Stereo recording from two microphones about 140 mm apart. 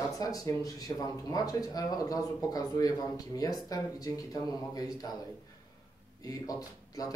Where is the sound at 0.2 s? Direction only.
25° left (ahead or behind).